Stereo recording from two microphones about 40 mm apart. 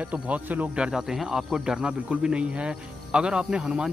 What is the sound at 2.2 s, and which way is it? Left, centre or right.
Speech, right.